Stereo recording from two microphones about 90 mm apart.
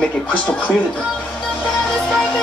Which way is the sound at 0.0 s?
15° left (ahead or behind).